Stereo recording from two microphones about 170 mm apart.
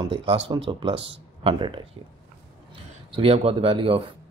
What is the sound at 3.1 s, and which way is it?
Speech, 35° right (ahead or behind).